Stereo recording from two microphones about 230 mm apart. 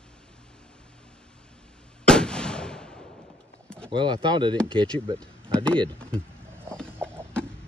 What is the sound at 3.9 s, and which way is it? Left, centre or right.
Speech, centre.